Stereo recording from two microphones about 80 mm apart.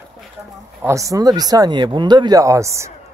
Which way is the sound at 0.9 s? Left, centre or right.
Right.